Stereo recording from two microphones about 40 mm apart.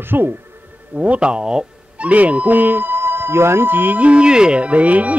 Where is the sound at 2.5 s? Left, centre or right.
Right.